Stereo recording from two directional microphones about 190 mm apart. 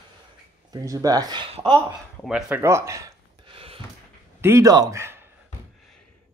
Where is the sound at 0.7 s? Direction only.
20° right (ahead or behind).